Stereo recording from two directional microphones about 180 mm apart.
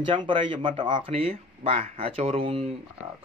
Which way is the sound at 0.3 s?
25° right (ahead or behind).